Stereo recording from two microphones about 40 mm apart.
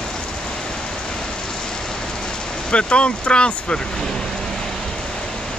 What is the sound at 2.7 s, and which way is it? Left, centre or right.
Speech, left.